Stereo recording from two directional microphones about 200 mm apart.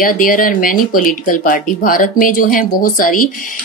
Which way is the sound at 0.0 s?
45° left (ahead or behind).